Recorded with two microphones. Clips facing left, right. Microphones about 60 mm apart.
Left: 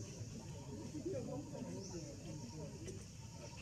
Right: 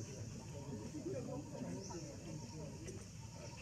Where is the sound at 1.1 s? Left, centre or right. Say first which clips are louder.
Left 1 dB; centre.